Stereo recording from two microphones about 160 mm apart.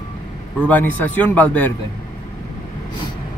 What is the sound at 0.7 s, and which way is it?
A man's voice, 10° left (ahead or behind).